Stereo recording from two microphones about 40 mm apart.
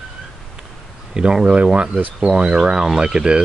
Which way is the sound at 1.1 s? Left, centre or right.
Right.